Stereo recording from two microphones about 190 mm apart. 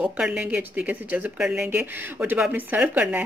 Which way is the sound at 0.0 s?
5° right (ahead or behind).